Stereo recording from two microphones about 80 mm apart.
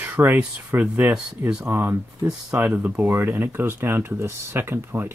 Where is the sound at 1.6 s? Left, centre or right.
Right.